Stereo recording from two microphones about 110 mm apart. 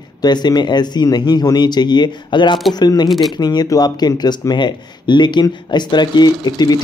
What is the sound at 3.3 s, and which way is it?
Speech, 40° left (ahead or behind).